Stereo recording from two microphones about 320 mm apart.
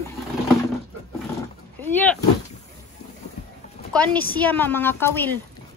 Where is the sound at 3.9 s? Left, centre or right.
Centre.